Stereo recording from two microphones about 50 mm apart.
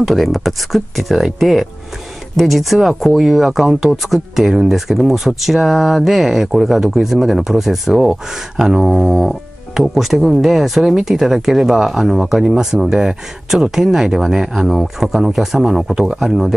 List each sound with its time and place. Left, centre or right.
0.0 s speech: centre
14.7 s speech: centre